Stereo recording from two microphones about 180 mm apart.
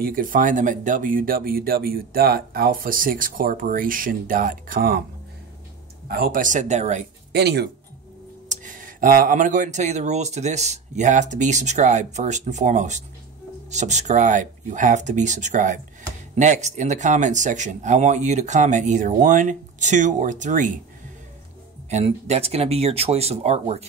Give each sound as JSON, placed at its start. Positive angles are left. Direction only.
{"t": 0.0, "sound": "speech", "side_deg": -50}
{"t": 6.0, "sound": "speech", "side_deg": -60}
{"t": 7.3, "sound": "speech", "side_deg": -65}
{"t": 8.6, "sound": "speech", "side_deg": -50}
{"t": 21.8, "sound": "speech", "side_deg": -40}